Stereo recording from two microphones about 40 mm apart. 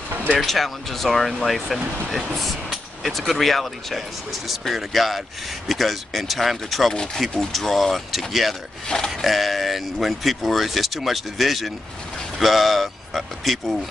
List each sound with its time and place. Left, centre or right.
0.5 s speech: centre
7.5 s speech: centre
8.8 s a sound: centre
9.2 s speech: centre